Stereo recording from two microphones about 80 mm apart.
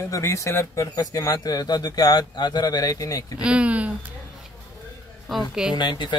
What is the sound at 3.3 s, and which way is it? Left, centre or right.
Speech, centre.